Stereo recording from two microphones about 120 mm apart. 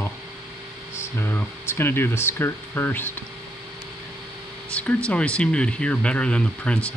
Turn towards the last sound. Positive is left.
turn(degrees=10)  # may be behind; listen again after turning